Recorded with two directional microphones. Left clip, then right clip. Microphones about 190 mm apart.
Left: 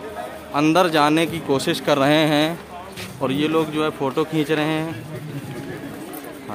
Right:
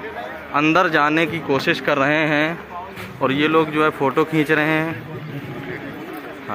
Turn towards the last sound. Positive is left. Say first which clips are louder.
# right 4 dB
turn(degrees=5)  # may be behind; listen again after turning